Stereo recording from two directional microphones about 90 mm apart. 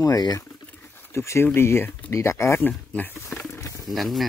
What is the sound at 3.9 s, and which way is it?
Speech, centre (ahead or behind).